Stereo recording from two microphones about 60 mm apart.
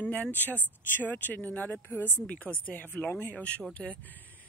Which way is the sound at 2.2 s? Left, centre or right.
Left.